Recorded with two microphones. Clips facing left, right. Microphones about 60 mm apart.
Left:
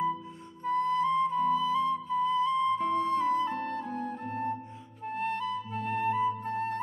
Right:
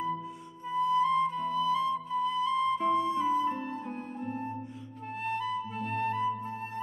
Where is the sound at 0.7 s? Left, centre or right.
Left.